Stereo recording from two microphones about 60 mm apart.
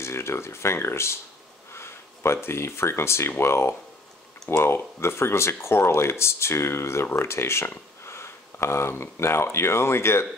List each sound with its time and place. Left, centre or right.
0.0 s speech: left
1.7 s a sound: left
2.4 s speech: left